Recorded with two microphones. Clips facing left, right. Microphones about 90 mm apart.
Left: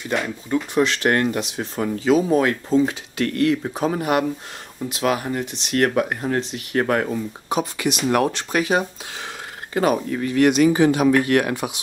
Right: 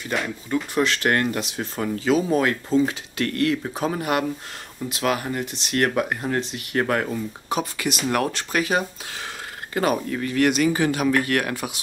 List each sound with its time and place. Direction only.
0.1 s speech: centre (ahead or behind)
8.1 s speech: 20° left (ahead or behind)